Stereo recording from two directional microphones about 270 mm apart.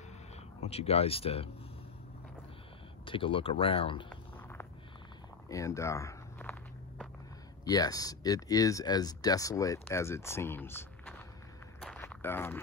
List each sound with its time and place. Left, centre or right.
0.6 s speech: left
3.1 s speech: centre
4.4 s a sound: centre
5.5 s speech: centre
7.6 s speech: centre
11.8 s walk: centre